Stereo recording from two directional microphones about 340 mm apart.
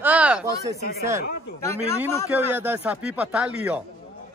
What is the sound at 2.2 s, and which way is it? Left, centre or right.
Speech, centre.